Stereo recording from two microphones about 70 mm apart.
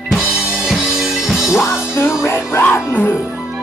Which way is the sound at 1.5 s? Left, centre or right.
Left.